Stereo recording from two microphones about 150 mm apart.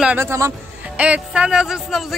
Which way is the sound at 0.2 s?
20° right (ahead or behind).